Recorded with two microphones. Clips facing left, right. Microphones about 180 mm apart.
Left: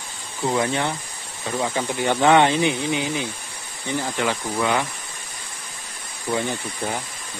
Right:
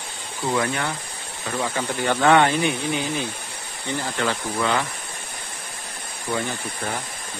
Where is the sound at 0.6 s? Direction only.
25° left (ahead or behind).